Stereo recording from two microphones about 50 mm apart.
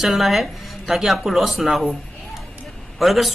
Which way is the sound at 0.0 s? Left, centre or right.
Centre.